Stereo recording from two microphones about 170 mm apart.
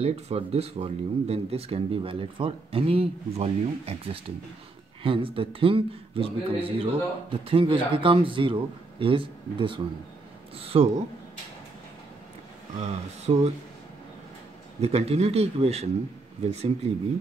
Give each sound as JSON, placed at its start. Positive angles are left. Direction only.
{"t": 0.0, "sound": "a man's voice", "side_deg": -40}
{"t": 12.8, "sound": "a man's voice", "side_deg": -40}
{"t": 14.8, "sound": "a man's voice", "side_deg": -35}